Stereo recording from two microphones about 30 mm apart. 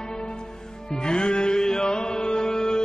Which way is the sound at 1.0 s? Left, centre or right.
Left.